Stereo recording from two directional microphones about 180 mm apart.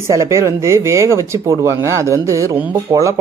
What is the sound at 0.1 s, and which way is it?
Speech, 15° right (ahead or behind).